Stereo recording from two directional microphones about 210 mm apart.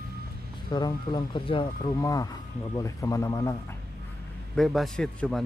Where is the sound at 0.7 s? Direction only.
20° left (ahead or behind).